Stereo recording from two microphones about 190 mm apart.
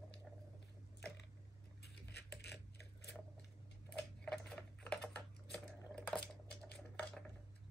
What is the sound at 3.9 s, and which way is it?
Typing, 5° left (ahead or behind).